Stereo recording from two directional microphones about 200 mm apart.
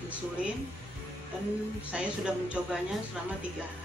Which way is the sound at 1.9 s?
5° right (ahead or behind).